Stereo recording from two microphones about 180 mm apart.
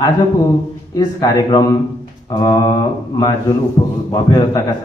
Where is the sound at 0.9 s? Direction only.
20° left (ahead or behind).